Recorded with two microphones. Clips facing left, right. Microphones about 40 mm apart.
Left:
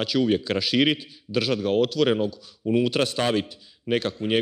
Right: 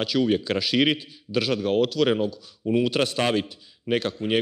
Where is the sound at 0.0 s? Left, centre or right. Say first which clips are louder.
Even; centre.